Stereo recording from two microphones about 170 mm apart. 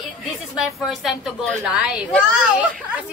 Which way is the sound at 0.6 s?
Centre (ahead or behind).